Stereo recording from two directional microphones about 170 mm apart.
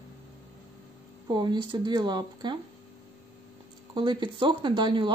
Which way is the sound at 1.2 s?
25° right (ahead or behind).